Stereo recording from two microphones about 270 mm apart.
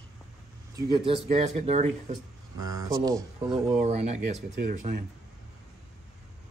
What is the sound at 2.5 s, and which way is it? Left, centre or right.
Speech, centre.